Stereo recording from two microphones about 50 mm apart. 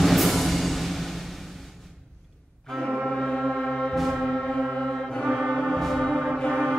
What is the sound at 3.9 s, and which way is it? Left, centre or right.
Music, centre.